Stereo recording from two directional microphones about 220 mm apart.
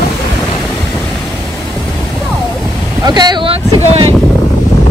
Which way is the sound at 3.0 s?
20° right (ahead or behind).